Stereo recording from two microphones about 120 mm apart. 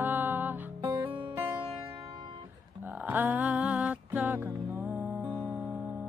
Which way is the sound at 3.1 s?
15° right (ahead or behind).